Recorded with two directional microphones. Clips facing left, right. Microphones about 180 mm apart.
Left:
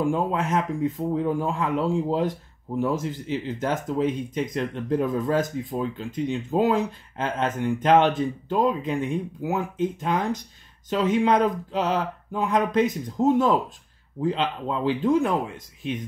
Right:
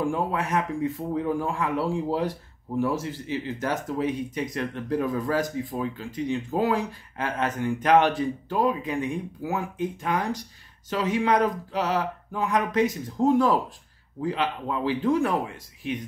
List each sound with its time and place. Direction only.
0.0 s speech: 20° left (ahead or behind)